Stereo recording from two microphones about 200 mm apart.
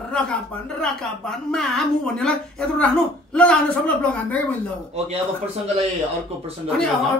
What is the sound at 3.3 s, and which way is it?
A woman's voice, 5° left (ahead or behind).